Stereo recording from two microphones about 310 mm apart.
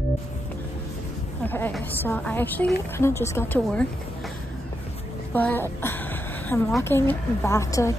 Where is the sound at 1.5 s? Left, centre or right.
Centre.